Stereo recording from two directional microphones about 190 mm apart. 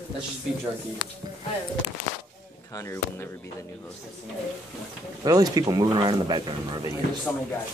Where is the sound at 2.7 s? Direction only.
15° left (ahead or behind).